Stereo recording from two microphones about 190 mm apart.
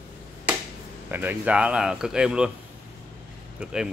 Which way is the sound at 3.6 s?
5° right (ahead or behind).